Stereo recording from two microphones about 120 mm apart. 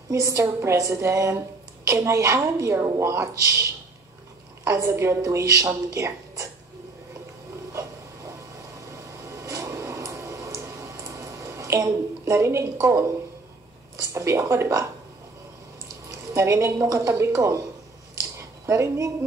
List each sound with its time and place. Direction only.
0.1 s a woman's voice: 25° right (ahead or behind)
4.6 s a woman's voice: 25° right (ahead or behind)
8.9 s a sound: 25° right (ahead or behind)
14.1 s a woman's voice: 25° right (ahead or behind)
16.1 s a woman's voice: 25° right (ahead or behind)
18.4 s a sound: 25° right (ahead or behind)